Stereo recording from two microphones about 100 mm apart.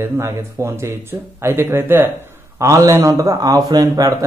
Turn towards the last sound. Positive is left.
turn(degrees=-35)  # may be behind; listen again after turning